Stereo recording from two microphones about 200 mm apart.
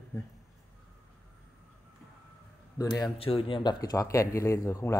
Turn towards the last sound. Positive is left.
turn(degrees=15)  # may be behind; listen again after turning